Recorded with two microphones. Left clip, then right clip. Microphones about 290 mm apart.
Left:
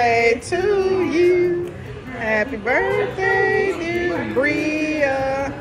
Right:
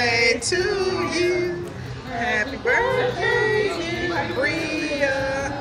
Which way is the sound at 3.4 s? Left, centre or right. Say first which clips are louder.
Left 3 dB; centre.